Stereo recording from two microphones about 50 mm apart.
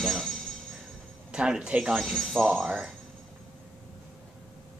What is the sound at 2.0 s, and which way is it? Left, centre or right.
Speech, centre.